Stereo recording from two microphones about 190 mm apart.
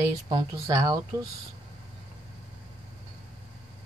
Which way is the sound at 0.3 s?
20° right (ahead or behind).